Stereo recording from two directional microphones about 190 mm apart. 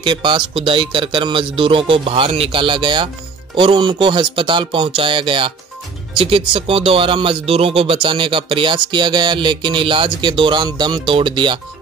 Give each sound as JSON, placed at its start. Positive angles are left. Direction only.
{"t": 0.0, "sound": "speech", "side_deg": -25}